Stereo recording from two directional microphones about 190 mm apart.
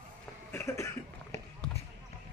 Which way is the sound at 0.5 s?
15° left (ahead or behind).